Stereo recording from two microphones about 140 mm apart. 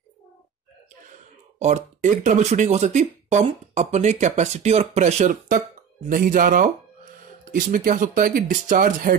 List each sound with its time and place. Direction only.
1.6 s speech: 55° right (ahead or behind)
6.0 s speech: 80° right